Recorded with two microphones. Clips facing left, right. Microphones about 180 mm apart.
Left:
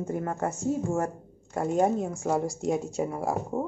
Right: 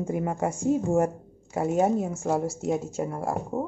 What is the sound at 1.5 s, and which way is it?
Speech, 5° right (ahead or behind).